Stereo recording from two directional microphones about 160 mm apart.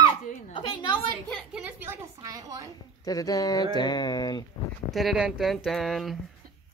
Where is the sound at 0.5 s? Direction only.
30° left (ahead or behind).